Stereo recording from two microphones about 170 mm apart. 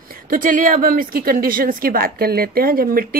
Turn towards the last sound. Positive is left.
turn(degrees=-60)  # may be behind; listen again after turning